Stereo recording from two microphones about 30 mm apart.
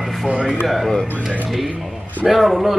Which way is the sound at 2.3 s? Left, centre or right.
Centre.